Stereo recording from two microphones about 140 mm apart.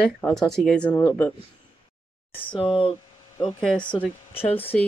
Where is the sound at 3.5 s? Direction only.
5° left (ahead or behind).